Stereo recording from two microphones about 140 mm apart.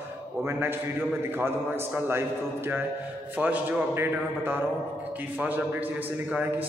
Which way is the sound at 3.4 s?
10° right (ahead or behind).